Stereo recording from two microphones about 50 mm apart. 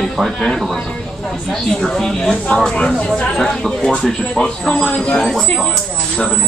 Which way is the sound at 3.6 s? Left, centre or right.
Centre.